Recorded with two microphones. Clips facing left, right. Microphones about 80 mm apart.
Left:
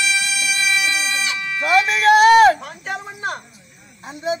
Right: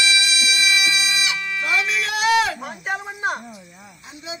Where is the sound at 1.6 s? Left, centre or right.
Left.